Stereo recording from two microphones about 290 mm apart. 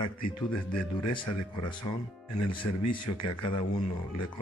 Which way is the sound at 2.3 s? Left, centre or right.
Left.